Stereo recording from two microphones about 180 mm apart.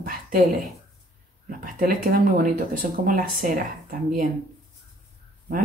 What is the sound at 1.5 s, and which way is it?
Speech, 50° right (ahead or behind).